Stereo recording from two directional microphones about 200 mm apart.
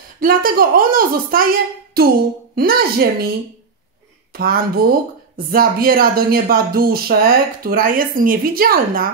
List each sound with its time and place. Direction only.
0.2 s speech: 45° right (ahead or behind)
4.3 s speech: 50° right (ahead or behind)